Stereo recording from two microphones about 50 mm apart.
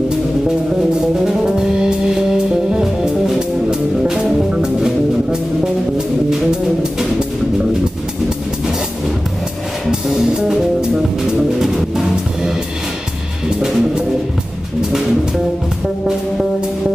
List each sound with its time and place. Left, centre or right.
1.2 s music: centre
6.5 s music: centre
9.8 s music: centre
13.5 s music: centre